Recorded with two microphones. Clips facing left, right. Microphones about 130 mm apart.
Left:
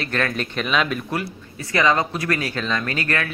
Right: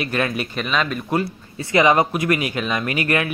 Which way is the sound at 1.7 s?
20° right (ahead or behind).